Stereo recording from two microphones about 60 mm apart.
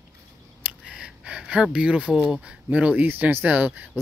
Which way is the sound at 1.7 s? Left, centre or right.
Centre.